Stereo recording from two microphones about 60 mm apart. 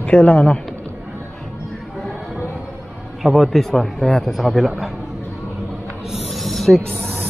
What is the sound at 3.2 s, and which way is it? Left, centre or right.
A man's voice, centre.